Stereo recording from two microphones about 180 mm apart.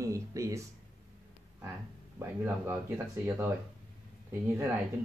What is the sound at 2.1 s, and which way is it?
Speech, 15° right (ahead or behind).